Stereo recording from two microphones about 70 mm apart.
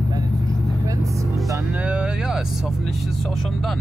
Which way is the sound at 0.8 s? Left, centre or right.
Right.